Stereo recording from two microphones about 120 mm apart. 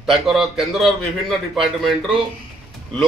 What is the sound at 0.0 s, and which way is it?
A man's voice, centre (ahead or behind).